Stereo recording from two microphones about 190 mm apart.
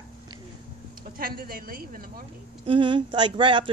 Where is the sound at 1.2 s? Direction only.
50° right (ahead or behind).